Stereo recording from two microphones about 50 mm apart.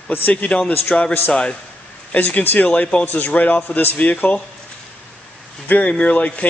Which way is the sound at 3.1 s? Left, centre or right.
Left.